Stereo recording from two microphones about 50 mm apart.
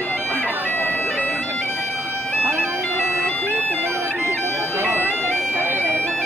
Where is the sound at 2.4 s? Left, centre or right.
Right.